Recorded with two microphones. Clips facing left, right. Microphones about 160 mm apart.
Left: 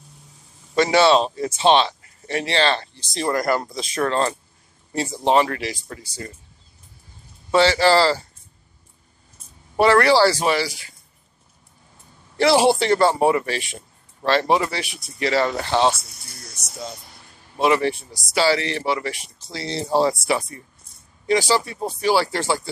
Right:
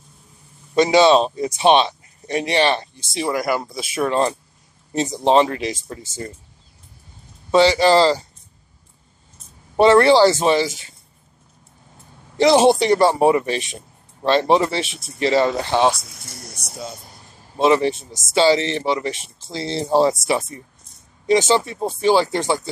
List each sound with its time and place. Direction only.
0.7 s speech: 15° right (ahead or behind)
3.1 s speech: 5° right (ahead or behind); by 6.2 s 20° right (ahead or behind)
7.5 s speech: 15° right (ahead or behind)
9.8 s speech: 25° right (ahead or behind)
12.4 s speech: 20° right (ahead or behind)
16.1 s speech: 90° right
16.5 s speech: 10° right (ahead or behind)
17.6 s speech: 20° right (ahead or behind)